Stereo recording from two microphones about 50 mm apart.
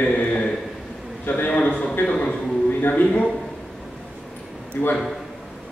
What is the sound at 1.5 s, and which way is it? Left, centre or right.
A man's voice, left.